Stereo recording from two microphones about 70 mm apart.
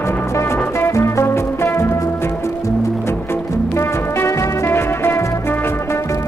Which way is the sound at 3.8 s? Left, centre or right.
Left.